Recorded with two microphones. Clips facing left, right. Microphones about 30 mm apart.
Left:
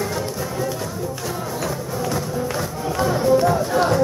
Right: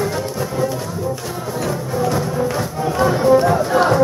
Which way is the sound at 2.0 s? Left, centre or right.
Centre.